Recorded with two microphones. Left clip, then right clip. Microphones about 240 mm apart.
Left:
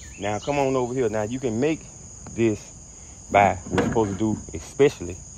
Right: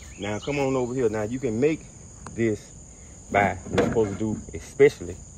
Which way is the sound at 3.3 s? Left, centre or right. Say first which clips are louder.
Left 4 dB; left.